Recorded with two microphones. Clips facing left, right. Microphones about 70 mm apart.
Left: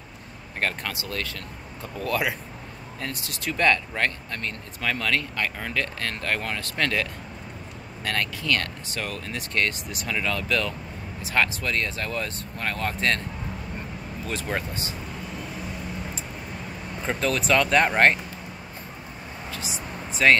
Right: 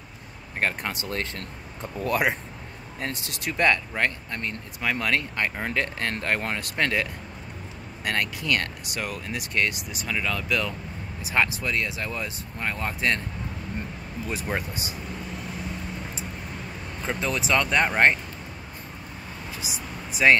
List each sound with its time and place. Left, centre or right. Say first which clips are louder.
0.6 s speech: right 1 dB; centre
14.2 s speech: even; centre
17.2 s speech: left 3 dB; centre
20.1 s speech: even; centre